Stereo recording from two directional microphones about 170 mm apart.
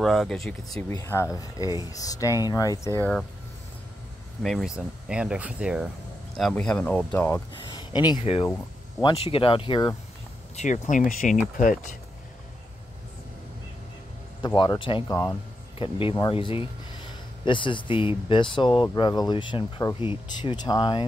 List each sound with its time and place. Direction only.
0.0 s speech: centre (ahead or behind)
4.4 s speech: centre (ahead or behind)
6.5 s speech: 10° left (ahead or behind)
7.7 s a sound: 25° left (ahead or behind)
9.2 s speech: 30° left (ahead or behind)
10.5 s speech: 45° left (ahead or behind)
14.4 s speech: 25° left (ahead or behind)